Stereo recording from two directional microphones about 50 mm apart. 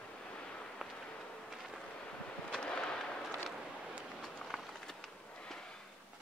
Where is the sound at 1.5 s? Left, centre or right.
Centre.